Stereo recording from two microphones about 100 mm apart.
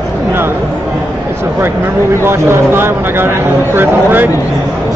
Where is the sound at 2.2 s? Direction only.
25° right (ahead or behind).